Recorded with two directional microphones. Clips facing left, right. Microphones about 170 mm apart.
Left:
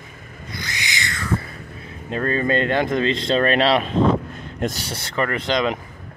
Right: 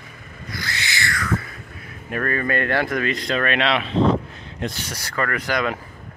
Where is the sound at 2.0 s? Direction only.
25° left (ahead or behind); by 4.8 s 45° left (ahead or behind).